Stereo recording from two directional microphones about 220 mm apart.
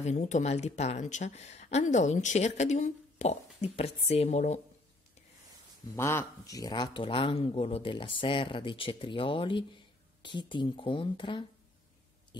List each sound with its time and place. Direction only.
0.0 s speech: 30° left (ahead or behind)
5.9 s speech: 10° left (ahead or behind)